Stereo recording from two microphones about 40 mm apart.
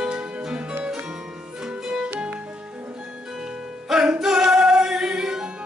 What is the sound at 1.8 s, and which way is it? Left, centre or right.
Music, right.